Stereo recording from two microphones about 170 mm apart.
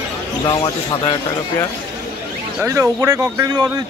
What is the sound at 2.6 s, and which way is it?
A man's voice, 20° right (ahead or behind).